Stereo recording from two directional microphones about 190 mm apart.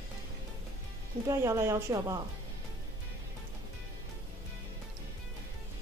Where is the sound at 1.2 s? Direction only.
15° right (ahead or behind).